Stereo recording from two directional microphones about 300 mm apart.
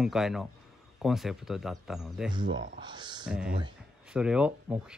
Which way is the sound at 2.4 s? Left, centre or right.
Right.